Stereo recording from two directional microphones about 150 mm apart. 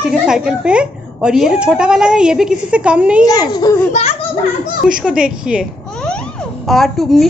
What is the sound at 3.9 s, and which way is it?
Speech, 45° left (ahead or behind).